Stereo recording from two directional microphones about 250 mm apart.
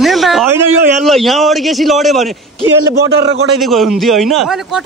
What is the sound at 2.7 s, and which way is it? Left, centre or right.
Speech, right.